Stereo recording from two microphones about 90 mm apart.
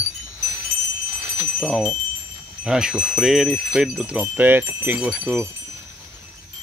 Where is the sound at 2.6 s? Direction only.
10° right (ahead or behind).